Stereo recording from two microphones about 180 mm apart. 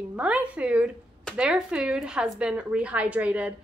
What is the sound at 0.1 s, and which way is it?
A woman's voice, 5° right (ahead or behind).